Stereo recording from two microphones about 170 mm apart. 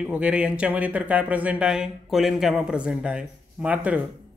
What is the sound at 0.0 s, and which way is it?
Speech, 5° right (ahead or behind).